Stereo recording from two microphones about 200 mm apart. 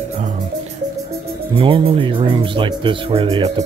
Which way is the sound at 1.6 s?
25° right (ahead or behind).